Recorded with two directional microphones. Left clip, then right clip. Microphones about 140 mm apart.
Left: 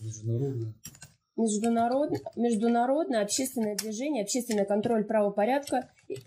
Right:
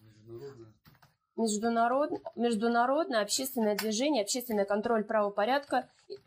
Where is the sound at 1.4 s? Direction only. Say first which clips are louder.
Left 1 dB; 25° left (ahead or behind).